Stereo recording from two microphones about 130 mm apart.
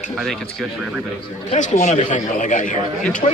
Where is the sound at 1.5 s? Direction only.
65° left (ahead or behind).